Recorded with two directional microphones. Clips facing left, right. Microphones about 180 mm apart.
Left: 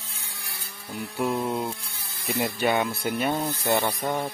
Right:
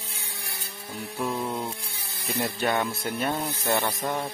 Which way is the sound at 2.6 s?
Centre (ahead or behind).